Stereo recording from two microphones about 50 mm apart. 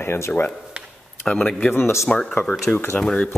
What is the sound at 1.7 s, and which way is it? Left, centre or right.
Speech, left.